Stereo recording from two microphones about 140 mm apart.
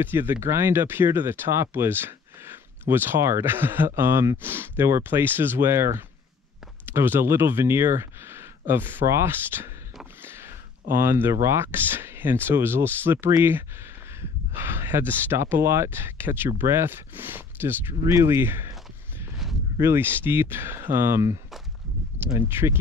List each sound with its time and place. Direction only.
0.0 s speech: 15° right (ahead or behind)
10.2 s a sound: 15° right (ahead or behind)
11.4 s speech: 15° right (ahead or behind)
19.4 s a sound: centre (ahead or behind)
19.8 s speech: 15° right (ahead or behind)
22.5 s speech: 15° right (ahead or behind)